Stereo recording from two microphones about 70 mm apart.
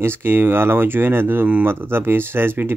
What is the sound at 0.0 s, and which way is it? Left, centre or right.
Speech, right.